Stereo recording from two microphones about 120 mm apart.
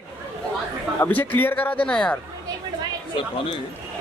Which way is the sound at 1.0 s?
15° left (ahead or behind).